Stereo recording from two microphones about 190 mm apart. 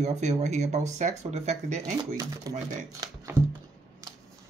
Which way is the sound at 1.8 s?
20° right (ahead or behind).